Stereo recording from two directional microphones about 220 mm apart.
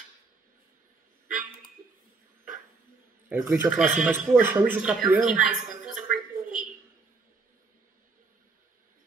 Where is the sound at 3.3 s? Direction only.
5° right (ahead or behind).